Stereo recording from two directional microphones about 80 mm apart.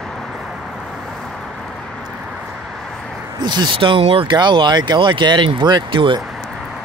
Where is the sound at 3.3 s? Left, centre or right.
Right.